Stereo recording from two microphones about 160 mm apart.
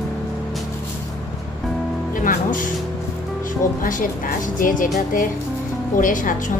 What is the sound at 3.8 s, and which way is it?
A woman's voice, 55° left (ahead or behind).